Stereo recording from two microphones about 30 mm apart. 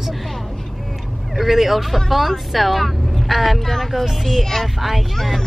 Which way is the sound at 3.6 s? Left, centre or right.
Centre.